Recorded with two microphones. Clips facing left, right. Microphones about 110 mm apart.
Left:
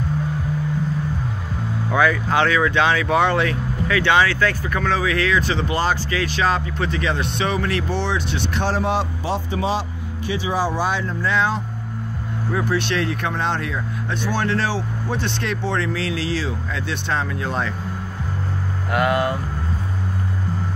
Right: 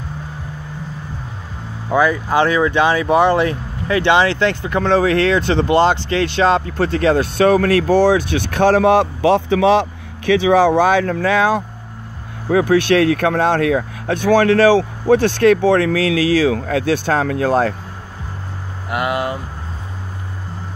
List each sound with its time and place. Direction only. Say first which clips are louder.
2.0 s speech: right 3 dB; 10° right (ahead or behind); by 6.6 s 30° right (ahead or behind)
6.6 s speech: right 7 dB; 40° right (ahead or behind); by 15.2 s 60° right (ahead or behind)
15.2 s speech: right 13 dB; 45° right (ahead or behind)
15.5 s speech: right 10 dB; 55° right (ahead or behind)
17.5 s speech: right 12 dB; 40° right (ahead or behind)
18.9 s speech: even; 5° right (ahead or behind)